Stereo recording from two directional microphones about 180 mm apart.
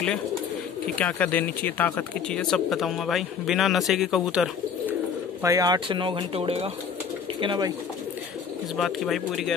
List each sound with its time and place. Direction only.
0.9 s speech: 10° left (ahead or behind)
5.4 s speech: 20° right (ahead or behind)
8.7 s speech: centre (ahead or behind)